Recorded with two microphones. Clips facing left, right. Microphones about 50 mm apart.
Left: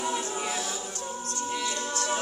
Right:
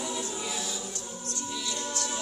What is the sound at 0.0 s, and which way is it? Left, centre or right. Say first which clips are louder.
Music: left 4 dB; left.